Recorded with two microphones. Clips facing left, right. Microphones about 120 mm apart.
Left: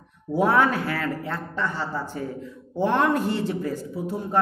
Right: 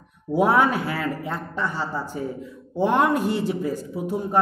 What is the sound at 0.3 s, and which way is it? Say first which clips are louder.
A woman's voice: right 1 dB; 15° right (ahead or behind).